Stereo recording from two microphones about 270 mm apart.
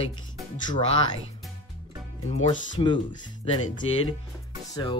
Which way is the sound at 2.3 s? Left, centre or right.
Left.